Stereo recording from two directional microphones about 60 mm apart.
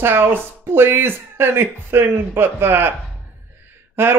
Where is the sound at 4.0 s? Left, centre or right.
Right.